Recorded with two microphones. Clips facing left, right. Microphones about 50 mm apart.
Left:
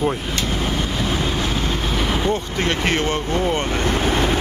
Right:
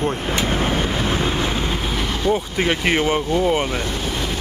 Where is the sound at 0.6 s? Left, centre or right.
Right.